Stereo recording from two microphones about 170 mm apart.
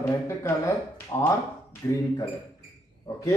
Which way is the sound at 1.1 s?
20° left (ahead or behind).